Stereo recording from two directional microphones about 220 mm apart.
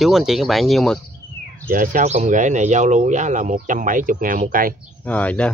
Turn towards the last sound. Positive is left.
turn(degrees=5)  # may be behind; listen again after turning